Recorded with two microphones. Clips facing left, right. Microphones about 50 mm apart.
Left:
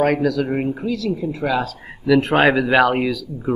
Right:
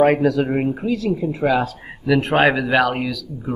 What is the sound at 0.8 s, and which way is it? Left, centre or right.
Speech, right.